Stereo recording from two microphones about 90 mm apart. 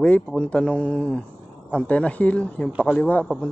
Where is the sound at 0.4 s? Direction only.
10° left (ahead or behind).